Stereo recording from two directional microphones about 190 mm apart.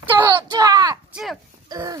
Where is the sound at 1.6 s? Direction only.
15° right (ahead or behind).